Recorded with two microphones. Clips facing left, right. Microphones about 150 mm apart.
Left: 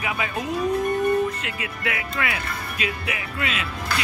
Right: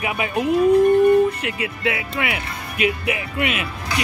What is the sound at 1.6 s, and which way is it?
Speech, 25° right (ahead or behind).